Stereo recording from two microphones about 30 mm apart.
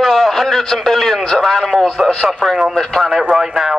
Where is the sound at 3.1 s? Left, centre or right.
Centre.